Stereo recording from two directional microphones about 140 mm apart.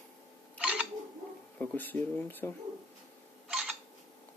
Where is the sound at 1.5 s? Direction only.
15° left (ahead or behind).